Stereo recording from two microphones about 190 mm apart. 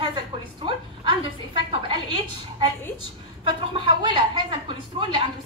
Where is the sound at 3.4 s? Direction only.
25° right (ahead or behind).